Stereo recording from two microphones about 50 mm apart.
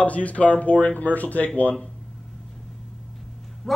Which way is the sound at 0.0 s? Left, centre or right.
Left.